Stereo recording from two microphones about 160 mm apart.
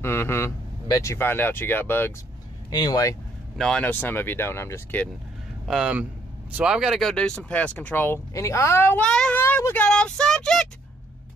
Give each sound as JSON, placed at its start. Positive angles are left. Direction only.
{"t": 0.0, "sound": "speech", "side_deg": 15}
{"t": 2.7, "sound": "speech", "side_deg": 25}
{"t": 3.5, "sound": "speech", "side_deg": 5}
{"t": 5.7, "sound": "speech", "side_deg": -5}
{"t": 9.8, "sound": "child singing", "side_deg": 5}